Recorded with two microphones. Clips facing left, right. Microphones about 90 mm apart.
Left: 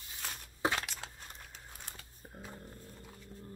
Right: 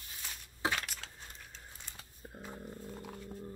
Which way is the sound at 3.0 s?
55° right (ahead or behind).